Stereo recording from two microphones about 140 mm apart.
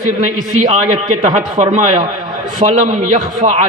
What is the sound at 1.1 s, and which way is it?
Speech, 60° right (ahead or behind).